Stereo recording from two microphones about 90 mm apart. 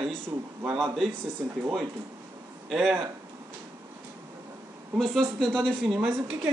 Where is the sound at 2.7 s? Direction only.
5° right (ahead or behind).